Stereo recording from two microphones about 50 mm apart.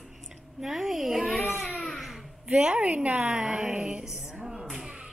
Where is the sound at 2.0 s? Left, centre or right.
Centre.